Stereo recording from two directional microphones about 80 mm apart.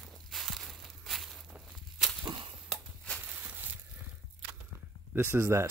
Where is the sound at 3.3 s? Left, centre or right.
Right.